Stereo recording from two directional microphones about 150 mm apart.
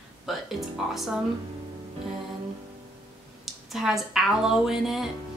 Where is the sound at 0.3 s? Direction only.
Centre (ahead or behind).